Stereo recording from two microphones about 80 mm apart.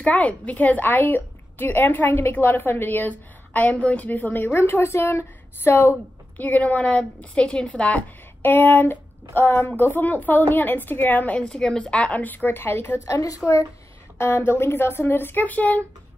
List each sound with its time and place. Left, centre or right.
0.0 s a woman's voice: centre
13.0 s a woman's voice: left
14.1 s a woman's voice: left